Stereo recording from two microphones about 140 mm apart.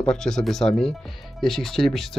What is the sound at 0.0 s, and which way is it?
Speech, 5° left (ahead or behind).